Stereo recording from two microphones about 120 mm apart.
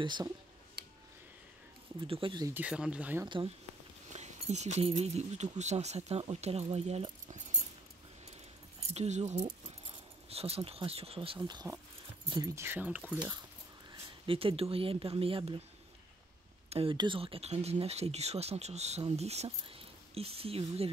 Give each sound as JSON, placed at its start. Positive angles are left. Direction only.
{"t": 0.0, "sound": "speech", "side_deg": -40}
{"t": 2.0, "sound": "speech", "side_deg": -50}
{"t": 2.5, "sound": "speech", "side_deg": -10}
{"t": 3.3, "sound": "speech", "side_deg": -45}
{"t": 4.1, "sound": "speech", "side_deg": -70}
{"t": 8.9, "sound": "speech", "side_deg": -70}
{"t": 14.2, "sound": "speech", "side_deg": -50}
{"t": 16.6, "sound": "a sound", "side_deg": -55}
{"t": 16.9, "sound": "speech", "side_deg": -40}